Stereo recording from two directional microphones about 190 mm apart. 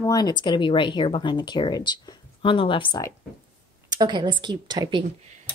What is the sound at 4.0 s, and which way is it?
A woman's voice, 25° right (ahead or behind).